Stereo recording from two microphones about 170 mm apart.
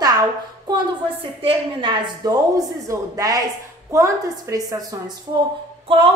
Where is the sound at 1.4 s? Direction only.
30° right (ahead or behind).